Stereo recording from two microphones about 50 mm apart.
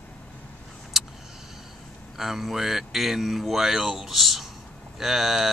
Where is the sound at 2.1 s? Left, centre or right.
Centre.